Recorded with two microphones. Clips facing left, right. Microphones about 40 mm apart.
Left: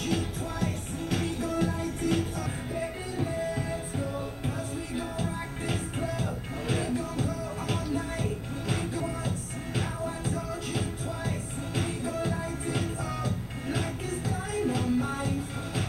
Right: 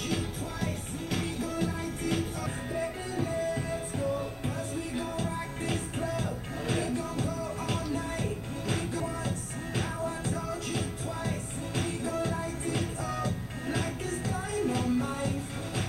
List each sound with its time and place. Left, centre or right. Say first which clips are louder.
0.1 s music: left 3 dB; centre
4.9 s music: left 1 dB; centre